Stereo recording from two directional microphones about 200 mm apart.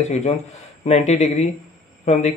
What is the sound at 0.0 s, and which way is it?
Speech, 30° left (ahead or behind).